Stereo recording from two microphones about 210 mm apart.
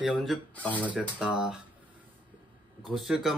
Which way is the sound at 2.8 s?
Centre (ahead or behind).